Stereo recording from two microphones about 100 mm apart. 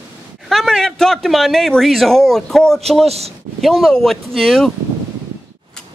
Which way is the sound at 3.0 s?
90° right.